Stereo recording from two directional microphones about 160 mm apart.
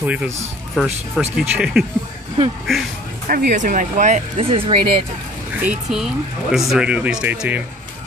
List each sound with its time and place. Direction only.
0.0 s speech: 10° right (ahead or behind)
3.3 s speech: 60° right (ahead or behind)
4.4 s speech: 35° right (ahead or behind)
5.6 s speech: 5° right (ahead or behind)